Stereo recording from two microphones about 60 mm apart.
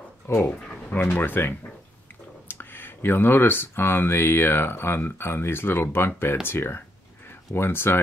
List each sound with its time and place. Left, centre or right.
0.8 s speech: left
2.5 s speech: left